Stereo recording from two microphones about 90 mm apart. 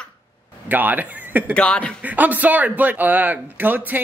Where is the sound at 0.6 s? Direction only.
20° right (ahead or behind).